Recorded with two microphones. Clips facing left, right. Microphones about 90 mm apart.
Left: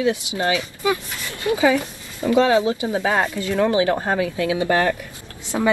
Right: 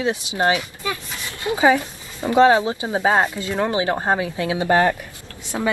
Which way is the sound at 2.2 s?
30° right (ahead or behind).